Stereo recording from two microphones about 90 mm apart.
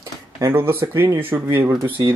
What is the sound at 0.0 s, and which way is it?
Speech, 30° right (ahead or behind).